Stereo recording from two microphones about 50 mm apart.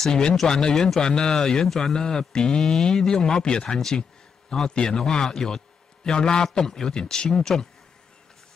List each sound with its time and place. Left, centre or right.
0.0 s speech: centre